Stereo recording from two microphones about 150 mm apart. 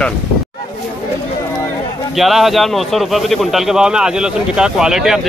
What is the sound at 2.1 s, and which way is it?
A man's voice, centre (ahead or behind).